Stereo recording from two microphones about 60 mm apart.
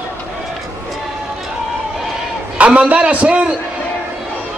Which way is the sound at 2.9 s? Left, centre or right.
Right.